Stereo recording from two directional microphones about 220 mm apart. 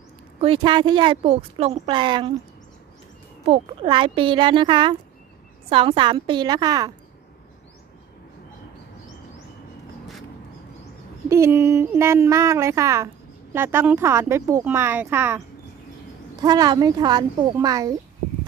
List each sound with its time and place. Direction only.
0.4 s speech: 25° right (ahead or behind)
3.4 s speech: 25° right (ahead or behind)
11.2 s speech: 10° right (ahead or behind)
16.4 s speech: 20° right (ahead or behind)